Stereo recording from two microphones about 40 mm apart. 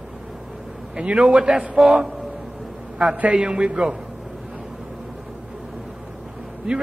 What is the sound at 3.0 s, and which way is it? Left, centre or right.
Speech, centre.